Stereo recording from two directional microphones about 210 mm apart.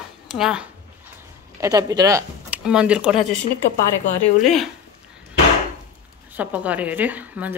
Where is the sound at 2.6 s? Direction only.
5° right (ahead or behind).